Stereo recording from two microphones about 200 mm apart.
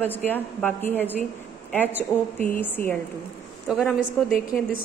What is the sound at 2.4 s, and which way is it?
Speech, 10° left (ahead or behind).